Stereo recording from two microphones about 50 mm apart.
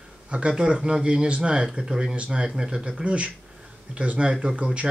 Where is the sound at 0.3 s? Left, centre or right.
Right.